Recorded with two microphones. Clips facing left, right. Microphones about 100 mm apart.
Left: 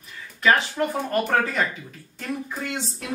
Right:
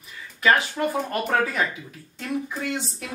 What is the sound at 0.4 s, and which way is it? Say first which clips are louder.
Speech: even; centre (ahead or behind).